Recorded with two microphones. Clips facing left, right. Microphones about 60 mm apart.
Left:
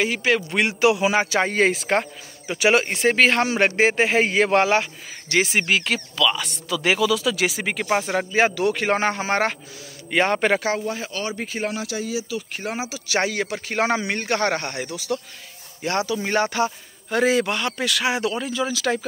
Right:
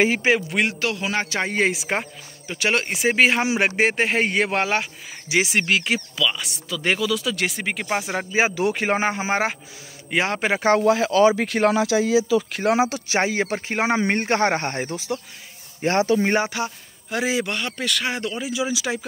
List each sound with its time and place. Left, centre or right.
0.0 s speech: right
0.5 s speech: centre
0.7 s a man's voice: centre
1.4 s speech: centre
2.4 s speech: centre
10.8 s speech: right
13.1 s speech: right
14.0 s speech: right
16.4 s speech: centre
18.4 s speech: centre